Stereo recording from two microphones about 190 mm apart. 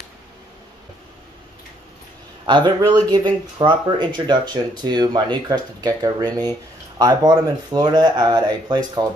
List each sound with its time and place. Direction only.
2.4 s speech: 25° right (ahead or behind)